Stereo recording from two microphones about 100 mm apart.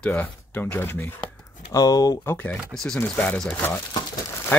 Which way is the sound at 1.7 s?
40° left (ahead or behind).